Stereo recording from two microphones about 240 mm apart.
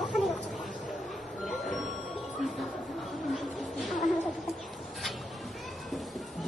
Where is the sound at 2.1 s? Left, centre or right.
Centre.